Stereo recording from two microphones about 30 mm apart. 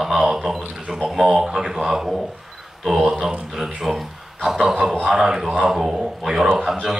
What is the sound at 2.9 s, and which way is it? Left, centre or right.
Speech, centre.